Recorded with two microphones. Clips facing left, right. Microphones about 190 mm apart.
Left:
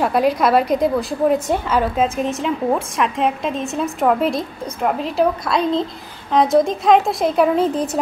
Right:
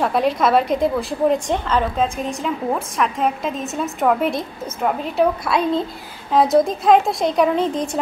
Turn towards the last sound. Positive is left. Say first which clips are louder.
# left 2 dB
turn(degrees=5)  # may be behind; listen again after turning